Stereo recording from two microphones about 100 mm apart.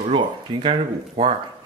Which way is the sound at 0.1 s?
60° right (ahead or behind).